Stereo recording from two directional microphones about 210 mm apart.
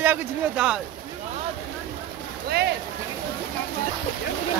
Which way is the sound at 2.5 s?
50° right (ahead or behind).